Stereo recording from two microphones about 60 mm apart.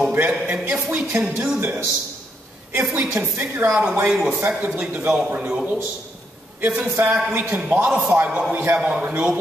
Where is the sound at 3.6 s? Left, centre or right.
Right.